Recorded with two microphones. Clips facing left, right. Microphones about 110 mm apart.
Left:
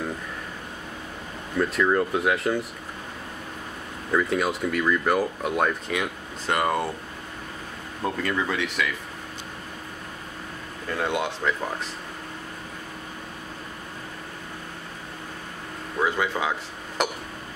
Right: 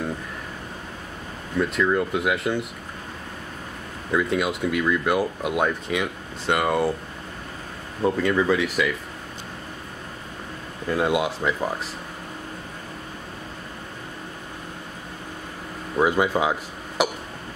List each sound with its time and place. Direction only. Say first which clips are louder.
1.6 s speech: even; centre (ahead or behind)
4.1 s speech: right 1 dB; centre (ahead or behind)
8.0 s speech: right 6 dB; centre (ahead or behind)
10.9 s speech: right 4 dB; 10° right (ahead or behind)
16.0 s speech: right 5 dB; 15° right (ahead or behind)
17.0 s a sound: right 3 dB; 5° right (ahead or behind)